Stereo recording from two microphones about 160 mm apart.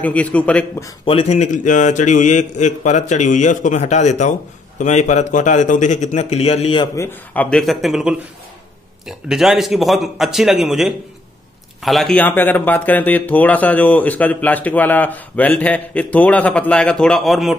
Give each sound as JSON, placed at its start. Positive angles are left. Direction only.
{"t": 0.0, "sound": "speech", "side_deg": 10}
{"t": 1.0, "sound": "a man's voice", "side_deg": 40}
{"t": 7.0, "sound": "a man's voice", "side_deg": 10}